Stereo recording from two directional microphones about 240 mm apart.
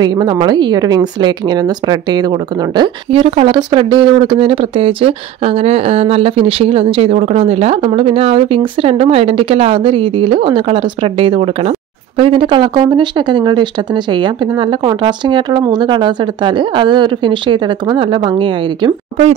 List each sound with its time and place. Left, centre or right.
0.0 s speech: centre